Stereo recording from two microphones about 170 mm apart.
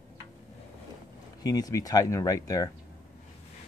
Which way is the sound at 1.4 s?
20° left (ahead or behind).